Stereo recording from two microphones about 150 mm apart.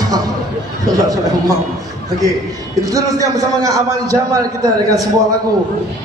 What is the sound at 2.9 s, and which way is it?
A man's voice, 25° right (ahead or behind).